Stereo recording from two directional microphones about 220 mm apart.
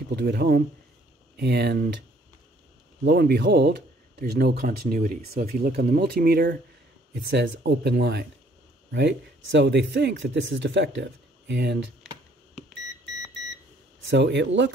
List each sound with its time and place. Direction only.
0.1 s speech: 45° right (ahead or behind)
3.1 s speech: 45° right (ahead or behind)
14.0 s speech: 55° right (ahead or behind)